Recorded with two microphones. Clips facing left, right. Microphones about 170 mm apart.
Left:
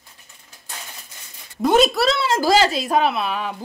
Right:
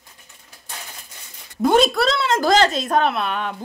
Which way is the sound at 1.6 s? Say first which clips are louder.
Even; centre (ahead or behind).